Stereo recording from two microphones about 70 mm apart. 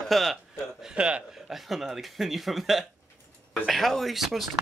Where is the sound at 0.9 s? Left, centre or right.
Centre.